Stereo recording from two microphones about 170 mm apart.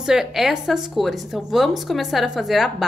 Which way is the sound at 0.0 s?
Centre (ahead or behind).